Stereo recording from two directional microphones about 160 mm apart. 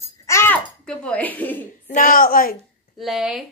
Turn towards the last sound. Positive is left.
turn(degrees=0)  # may be behind; listen again after turning